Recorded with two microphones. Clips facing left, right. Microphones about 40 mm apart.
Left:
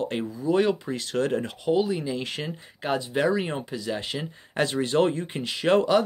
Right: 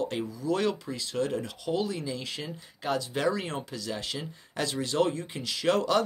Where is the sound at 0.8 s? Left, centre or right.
Left.